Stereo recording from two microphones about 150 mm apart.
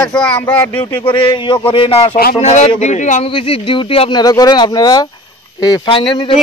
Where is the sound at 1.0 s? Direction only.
35° left (ahead or behind); by 3.3 s 50° left (ahead or behind).